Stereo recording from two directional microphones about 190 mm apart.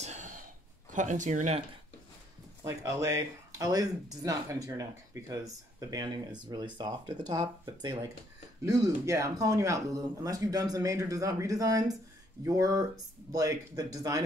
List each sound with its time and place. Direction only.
0.0 s a sound: 40° right (ahead or behind)
0.9 s speech: 40° right (ahead or behind)
2.6 s speech: 15° right (ahead or behind)